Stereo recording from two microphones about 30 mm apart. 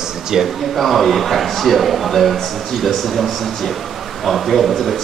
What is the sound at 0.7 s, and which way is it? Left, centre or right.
Speech, centre.